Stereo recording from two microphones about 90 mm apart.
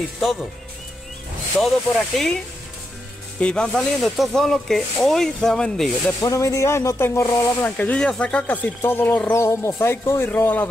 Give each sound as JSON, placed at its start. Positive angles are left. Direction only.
{"t": 1.6, "sound": "speech", "side_deg": 5}
{"t": 3.3, "sound": "speech", "side_deg": 10}
{"t": 6.2, "sound": "speech", "side_deg": 35}
{"t": 7.6, "sound": "speech", "side_deg": 15}